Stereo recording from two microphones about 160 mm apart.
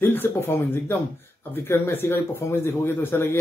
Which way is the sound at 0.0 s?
15° left (ahead or behind).